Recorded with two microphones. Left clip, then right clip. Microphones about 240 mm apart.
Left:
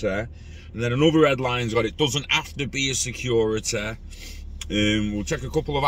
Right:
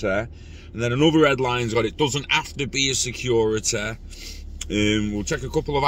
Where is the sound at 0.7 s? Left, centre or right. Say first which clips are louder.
Right 1 dB; centre.